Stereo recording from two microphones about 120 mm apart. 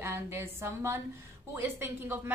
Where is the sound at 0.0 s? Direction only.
20° right (ahead or behind).